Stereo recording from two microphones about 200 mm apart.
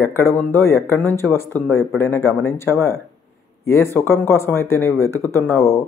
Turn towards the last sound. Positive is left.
turn(degrees=15)  # may be behind; listen again after turning